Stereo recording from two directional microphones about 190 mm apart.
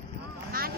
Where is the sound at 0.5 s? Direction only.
50° right (ahead or behind).